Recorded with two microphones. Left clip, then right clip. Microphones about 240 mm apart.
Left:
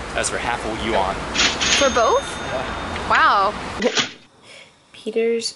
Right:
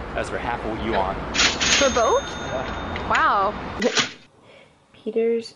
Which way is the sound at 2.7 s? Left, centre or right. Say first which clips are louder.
Left 4 dB; right.